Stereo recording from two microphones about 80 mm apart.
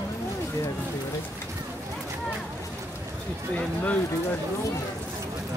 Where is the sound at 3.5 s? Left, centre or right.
Centre.